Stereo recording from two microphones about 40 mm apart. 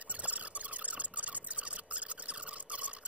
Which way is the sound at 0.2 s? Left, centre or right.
Right.